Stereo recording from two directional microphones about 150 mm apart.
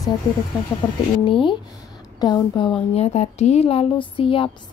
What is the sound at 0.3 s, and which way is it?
Speech, 30° left (ahead or behind).